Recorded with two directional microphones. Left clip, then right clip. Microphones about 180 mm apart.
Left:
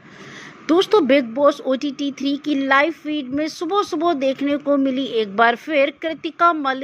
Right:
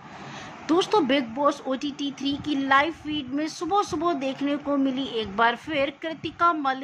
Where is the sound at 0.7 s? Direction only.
25° left (ahead or behind).